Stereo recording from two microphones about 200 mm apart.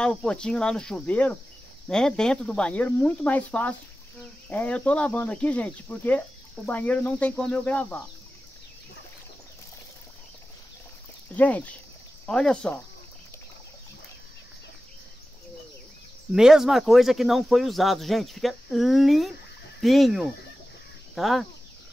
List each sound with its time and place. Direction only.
0.0 s speech: 5° left (ahead or behind)
11.3 s speech: 5° left (ahead or behind)
16.3 s speech: 5° right (ahead or behind)